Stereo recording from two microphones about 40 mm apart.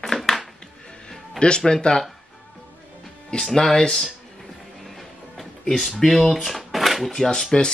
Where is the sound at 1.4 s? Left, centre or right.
Left.